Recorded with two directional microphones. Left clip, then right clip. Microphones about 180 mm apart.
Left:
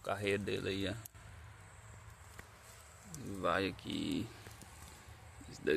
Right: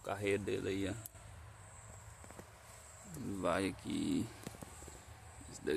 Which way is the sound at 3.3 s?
20° right (ahead or behind).